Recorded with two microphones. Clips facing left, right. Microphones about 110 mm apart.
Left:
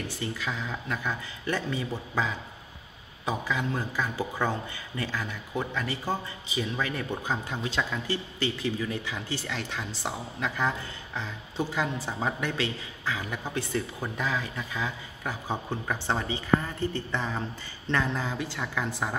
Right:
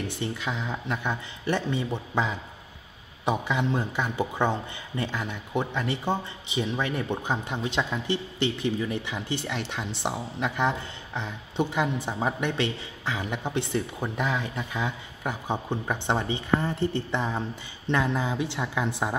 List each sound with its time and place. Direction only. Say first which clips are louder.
0.1 s speech: right 2 dB; 20° right (ahead or behind)